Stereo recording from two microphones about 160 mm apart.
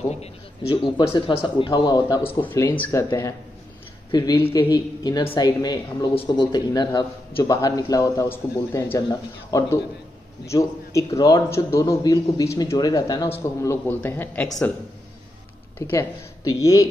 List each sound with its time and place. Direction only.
0.1 s a man's voice: 40° left (ahead or behind)
2.2 s a man's voice: 15° left (ahead or behind)
15.9 s a man's voice: 20° left (ahead or behind)